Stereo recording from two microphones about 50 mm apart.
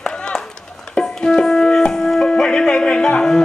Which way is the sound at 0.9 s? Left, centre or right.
Centre.